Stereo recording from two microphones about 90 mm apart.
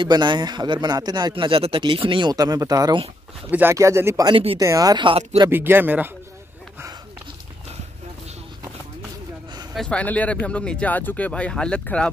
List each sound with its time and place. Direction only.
0.0 s speech: 55° right (ahead or behind)
2.3 s speech: 45° right (ahead or behind)
3.4 s speech: 20° right (ahead or behind)
3.7 s speech: 35° right (ahead or behind)
4.3 s speech: 90° right
4.6 s speech: 40° right (ahead or behind)
4.9 s speech: 80° right
5.5 s speech: 25° right (ahead or behind)
9.8 s speech: 15° left (ahead or behind)